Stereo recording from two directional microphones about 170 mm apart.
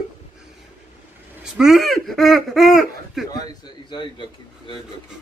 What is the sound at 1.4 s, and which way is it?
Speech, centre (ahead or behind).